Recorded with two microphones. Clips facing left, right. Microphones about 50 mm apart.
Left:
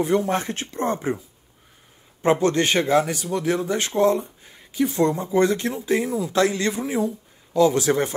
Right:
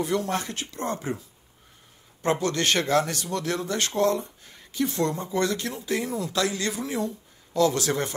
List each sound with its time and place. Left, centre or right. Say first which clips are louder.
0.0 s speech: left 5 dB; left
2.4 s speech: left 5 dB; left
6.0 s speech: left 4 dB; centre
6.3 s speech: left 7 dB; left
6.9 s speech: left 5 dB; centre